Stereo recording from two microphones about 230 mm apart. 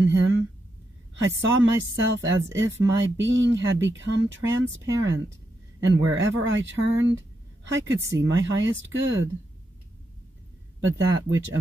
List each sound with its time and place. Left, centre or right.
0.0 s speech: right
10.8 s speech: right